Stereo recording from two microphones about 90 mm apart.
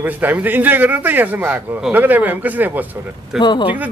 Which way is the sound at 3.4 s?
55° left (ahead or behind).